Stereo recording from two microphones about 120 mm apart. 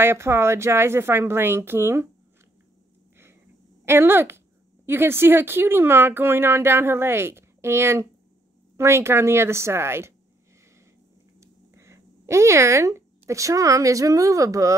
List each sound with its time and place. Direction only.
0.0 s speech: 20° right (ahead or behind)
3.8 s speech: 20° right (ahead or behind)
11.3 s speech: 25° right (ahead or behind)